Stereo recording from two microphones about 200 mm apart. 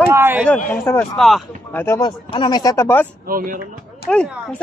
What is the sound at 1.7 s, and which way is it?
Speech, 15° left (ahead or behind).